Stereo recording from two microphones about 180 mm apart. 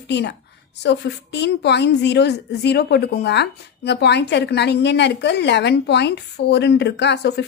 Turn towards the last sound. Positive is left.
turn(degrees=70)  # may be behind; listen again after turning